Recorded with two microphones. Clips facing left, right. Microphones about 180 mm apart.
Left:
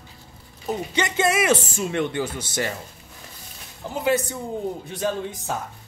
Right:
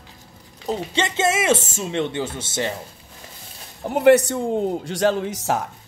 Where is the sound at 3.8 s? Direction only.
65° right (ahead or behind); by 5.6 s 80° right.